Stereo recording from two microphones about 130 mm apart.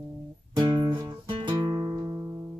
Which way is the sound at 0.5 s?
35° right (ahead or behind).